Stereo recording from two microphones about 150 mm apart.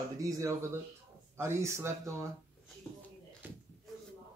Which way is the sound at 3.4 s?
15° right (ahead or behind).